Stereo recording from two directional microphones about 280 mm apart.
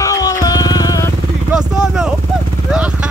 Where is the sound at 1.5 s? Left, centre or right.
Centre.